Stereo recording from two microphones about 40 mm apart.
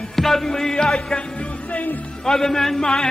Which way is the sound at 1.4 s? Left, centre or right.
Left.